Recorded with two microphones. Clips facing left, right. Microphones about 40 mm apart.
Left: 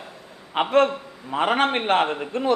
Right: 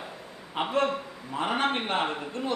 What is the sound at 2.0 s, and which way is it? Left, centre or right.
Speech, left.